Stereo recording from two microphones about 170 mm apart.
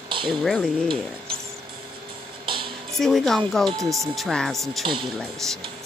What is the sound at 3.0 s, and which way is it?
Speech, centre (ahead or behind).